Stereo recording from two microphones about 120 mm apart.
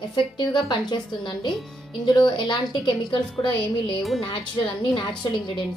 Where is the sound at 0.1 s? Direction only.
40° left (ahead or behind).